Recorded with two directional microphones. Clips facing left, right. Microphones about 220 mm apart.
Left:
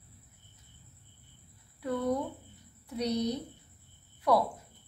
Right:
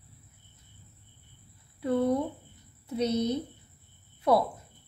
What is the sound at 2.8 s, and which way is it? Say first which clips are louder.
Speech: right 3 dB; 25° right (ahead or behind).